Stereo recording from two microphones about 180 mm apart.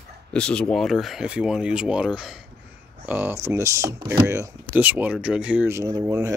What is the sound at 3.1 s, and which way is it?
Speech, 10° right (ahead or behind).